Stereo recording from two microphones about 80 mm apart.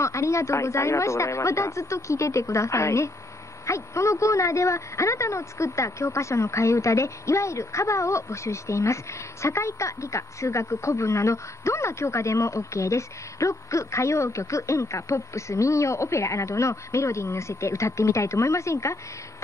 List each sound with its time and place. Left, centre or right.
0.0 s speech: left